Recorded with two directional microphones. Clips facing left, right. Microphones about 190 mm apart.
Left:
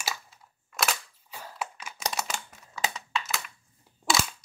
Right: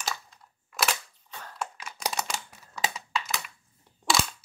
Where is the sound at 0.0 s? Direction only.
5° left (ahead or behind).